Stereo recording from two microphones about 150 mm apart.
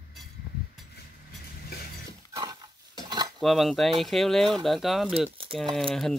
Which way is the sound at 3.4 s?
Centre (ahead or behind).